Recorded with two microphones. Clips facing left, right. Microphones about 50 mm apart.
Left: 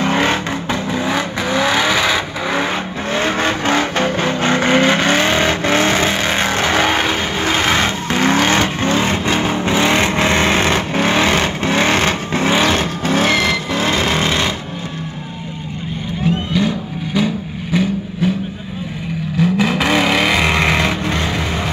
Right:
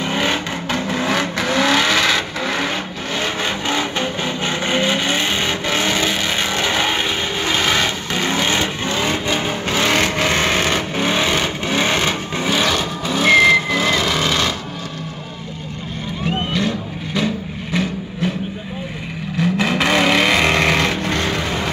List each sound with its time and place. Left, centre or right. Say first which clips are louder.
0.0 s vehicle: left 4 dB; left
0.9 s vehicle: even; centre
2.7 s vehicle: left 4 dB; left
9.5 s vehicle: left 3 dB; left
16.5 s vehicle: left 3 dB; centre